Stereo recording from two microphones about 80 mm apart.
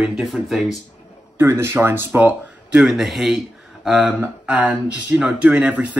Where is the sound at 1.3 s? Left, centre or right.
Right.